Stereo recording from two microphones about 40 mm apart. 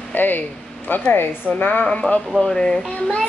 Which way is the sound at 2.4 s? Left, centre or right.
Centre.